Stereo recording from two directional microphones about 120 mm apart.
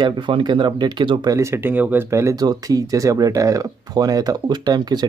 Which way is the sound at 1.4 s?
20° right (ahead or behind).